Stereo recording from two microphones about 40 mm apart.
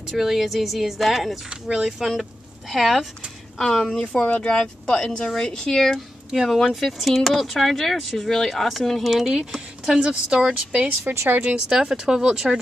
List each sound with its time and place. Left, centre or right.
0.2 s speech: centre
1.5 s speech: right
1.9 s speech: centre
3.5 s a woman's voice: centre
4.0 s a woman's voice: left
6.3 s speech: centre
9.9 s speech: centre
11.1 s a woman's voice: right
11.5 s speech: centre